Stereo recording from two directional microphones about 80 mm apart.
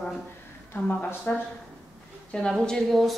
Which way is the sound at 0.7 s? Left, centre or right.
Left.